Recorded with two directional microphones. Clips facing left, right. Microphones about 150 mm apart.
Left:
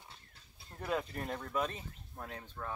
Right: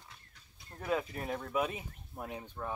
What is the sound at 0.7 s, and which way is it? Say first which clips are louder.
Speech: right 2 dB; centre (ahead or behind).